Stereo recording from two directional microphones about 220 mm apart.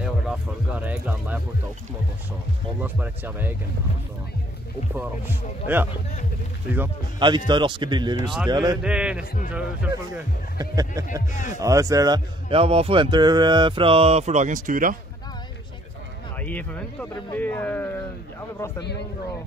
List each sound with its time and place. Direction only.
0.0 s speech: 5° right (ahead or behind)
2.8 s speech: 10° right (ahead or behind)
4.9 s speech: 10° right (ahead or behind)
7.2 s speech: 20° right (ahead or behind)
8.8 s a man's voice: 5° right (ahead or behind)
10.1 s speech: 15° right (ahead or behind); by 15.0 s 40° right (ahead or behind)
16.3 s speech: 5° left (ahead or behind)